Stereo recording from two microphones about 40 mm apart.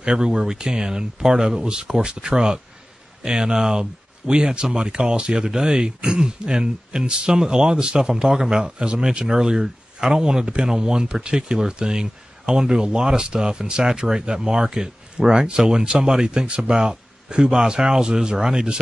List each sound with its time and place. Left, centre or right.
0.0 s speech: centre